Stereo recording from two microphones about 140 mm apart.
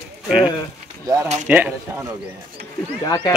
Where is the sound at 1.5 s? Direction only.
10° right (ahead or behind).